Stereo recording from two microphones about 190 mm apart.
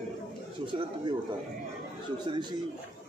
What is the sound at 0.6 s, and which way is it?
Speech, 25° right (ahead or behind).